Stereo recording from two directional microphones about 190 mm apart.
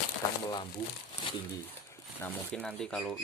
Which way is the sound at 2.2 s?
5° left (ahead or behind).